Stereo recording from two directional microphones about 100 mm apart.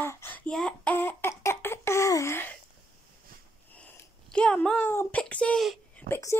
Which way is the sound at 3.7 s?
10° left (ahead or behind).